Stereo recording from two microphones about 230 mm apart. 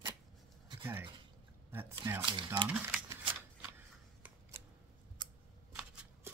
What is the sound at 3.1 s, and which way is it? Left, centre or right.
Shuffling cards, centre.